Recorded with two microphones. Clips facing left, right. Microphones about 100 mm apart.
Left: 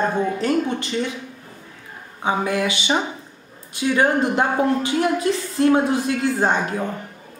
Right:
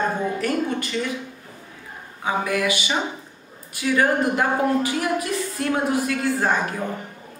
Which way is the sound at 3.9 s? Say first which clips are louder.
Left 1 dB; 25° left (ahead or behind).